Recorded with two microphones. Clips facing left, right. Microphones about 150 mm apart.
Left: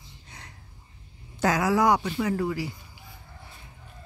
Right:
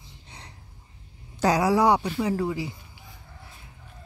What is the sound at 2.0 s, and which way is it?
Speech, 15° right (ahead or behind).